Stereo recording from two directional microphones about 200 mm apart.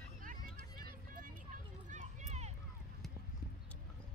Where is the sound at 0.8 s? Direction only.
45° right (ahead or behind).